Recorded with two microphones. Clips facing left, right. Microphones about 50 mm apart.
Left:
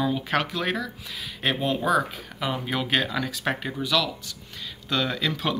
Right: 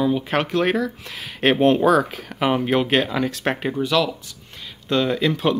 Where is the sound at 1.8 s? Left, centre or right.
Right.